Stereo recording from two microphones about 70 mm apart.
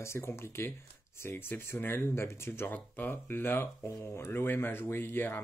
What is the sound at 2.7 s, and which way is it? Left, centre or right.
Speech, left.